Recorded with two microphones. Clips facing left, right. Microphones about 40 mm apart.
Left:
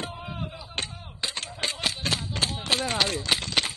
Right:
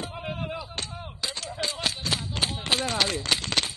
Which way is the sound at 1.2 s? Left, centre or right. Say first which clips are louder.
Left 1 dB; left.